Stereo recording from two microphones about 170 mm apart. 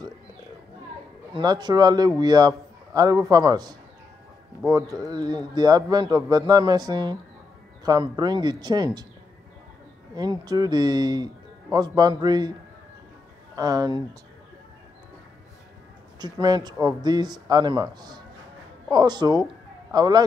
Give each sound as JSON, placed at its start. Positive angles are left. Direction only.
{"t": 1.3, "sound": "a man's voice", "side_deg": -25}
{"t": 10.1, "sound": "a man's voice", "side_deg": -25}
{"t": 13.6, "sound": "a man's voice", "side_deg": -20}
{"t": 16.2, "sound": "a man's voice", "side_deg": -25}